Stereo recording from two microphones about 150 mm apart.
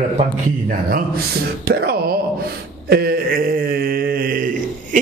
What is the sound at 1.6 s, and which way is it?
Speech, 90° right.